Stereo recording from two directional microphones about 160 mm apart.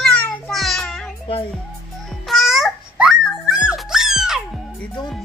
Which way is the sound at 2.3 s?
Centre (ahead or behind).